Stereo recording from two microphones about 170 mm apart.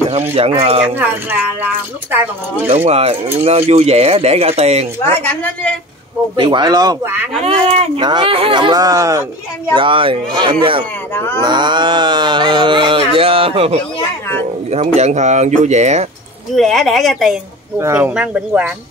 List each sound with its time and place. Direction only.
0.6 s speech: 35° right (ahead or behind)
0.8 s speech: 10° right (ahead or behind)
2.7 s speech: 40° right (ahead or behind)
5.2 s a woman's voice: 10° left (ahead or behind)
6.3 s speech: 30° right (ahead or behind)
7.4 s speech: 35° right (ahead or behind); by 9.2 s 20° right (ahead or behind)
9.8 s speech: 30° right (ahead or behind)
11.1 s a woman's voice: 10° left (ahead or behind)
11.4 s speech: 25° right (ahead or behind)
16.5 s a woman's voice: centre (ahead or behind)
17.7 s speech: 15° right (ahead or behind)